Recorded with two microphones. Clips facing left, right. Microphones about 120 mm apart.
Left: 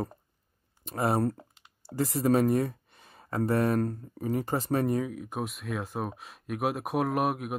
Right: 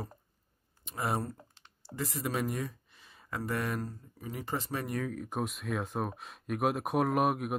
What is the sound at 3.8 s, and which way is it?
Speech, 60° left (ahead or behind).